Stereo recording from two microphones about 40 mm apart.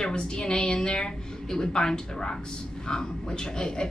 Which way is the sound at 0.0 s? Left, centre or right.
Left.